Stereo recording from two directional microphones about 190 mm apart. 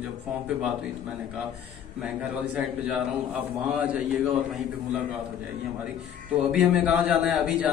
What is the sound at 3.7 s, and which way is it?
Speech, 5° right (ahead or behind).